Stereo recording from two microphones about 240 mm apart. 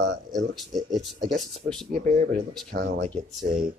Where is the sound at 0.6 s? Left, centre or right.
Centre.